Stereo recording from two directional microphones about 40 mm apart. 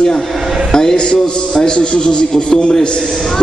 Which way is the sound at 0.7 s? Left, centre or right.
Centre.